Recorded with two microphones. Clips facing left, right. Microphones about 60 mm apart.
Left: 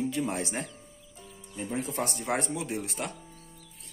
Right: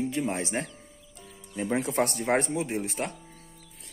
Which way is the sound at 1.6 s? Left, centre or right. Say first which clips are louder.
Right 6 dB; right.